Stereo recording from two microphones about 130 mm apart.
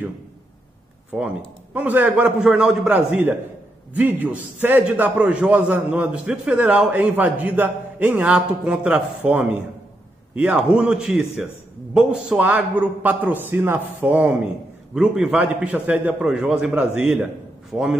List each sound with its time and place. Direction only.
1.1 s a man's voice: 10° right (ahead or behind)